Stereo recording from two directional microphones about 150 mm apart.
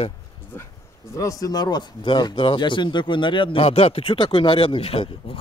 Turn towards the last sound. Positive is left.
turn(degrees=40)  # may be behind; listen again after turning